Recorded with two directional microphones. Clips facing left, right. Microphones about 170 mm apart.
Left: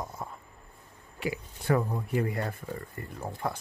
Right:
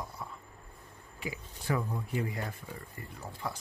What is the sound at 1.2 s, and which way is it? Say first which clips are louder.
Speech: left 6 dB; 70° left (ahead or behind).